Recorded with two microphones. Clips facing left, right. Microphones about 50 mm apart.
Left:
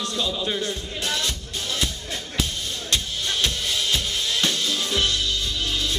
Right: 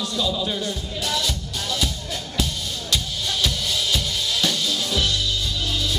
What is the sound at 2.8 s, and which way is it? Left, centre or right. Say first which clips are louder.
Music: even; left.